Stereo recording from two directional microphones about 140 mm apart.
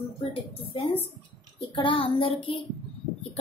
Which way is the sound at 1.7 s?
35° left (ahead or behind).